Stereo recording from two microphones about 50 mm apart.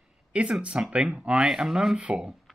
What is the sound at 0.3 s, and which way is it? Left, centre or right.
Speech, right.